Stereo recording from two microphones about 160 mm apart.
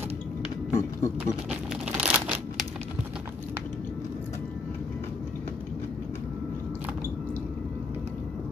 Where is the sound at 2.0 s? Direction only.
10° right (ahead or behind).